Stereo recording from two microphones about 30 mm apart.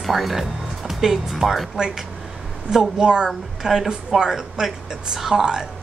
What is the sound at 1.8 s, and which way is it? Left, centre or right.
Speech, right.